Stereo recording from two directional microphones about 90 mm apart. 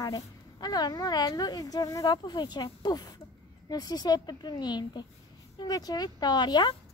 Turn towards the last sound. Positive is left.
turn(degrees=50)  # may be behind; listen again after turning